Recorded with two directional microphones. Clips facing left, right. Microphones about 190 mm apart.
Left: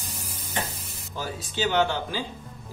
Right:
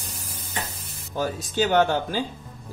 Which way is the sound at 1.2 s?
50° right (ahead or behind).